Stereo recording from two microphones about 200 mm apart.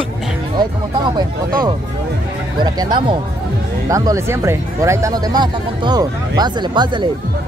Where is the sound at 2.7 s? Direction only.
20° right (ahead or behind).